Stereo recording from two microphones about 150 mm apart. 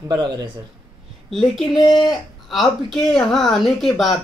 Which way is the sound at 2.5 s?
Centre (ahead or behind).